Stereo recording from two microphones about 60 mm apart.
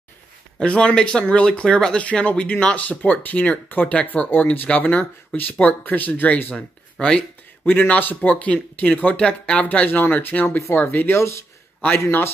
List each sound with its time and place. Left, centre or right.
0.6 s speech: centre
6.5 s speech: centre
7.6 s speech: left
9.8 s speech: left